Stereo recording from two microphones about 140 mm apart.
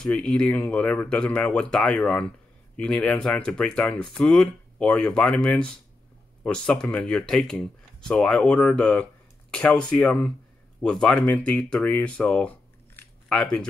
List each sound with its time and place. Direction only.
0.0 s speech: 5° left (ahead or behind)